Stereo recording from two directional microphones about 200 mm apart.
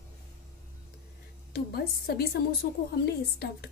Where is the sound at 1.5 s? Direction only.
55° left (ahead or behind).